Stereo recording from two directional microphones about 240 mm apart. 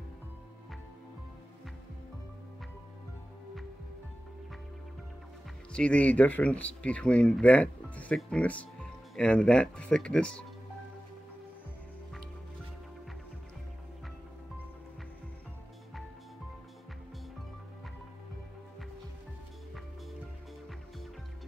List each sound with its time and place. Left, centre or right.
5.7 s speech: centre